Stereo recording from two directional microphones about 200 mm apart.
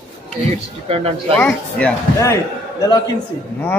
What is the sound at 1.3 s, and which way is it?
Speech, 5° left (ahead or behind).